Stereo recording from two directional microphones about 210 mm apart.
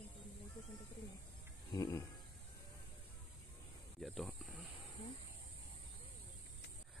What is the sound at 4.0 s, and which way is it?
Snake, centre (ahead or behind).